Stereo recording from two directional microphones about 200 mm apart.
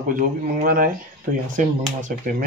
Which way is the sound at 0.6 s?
45° right (ahead or behind).